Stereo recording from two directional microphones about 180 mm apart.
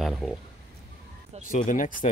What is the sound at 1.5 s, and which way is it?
Speech, 45° left (ahead or behind).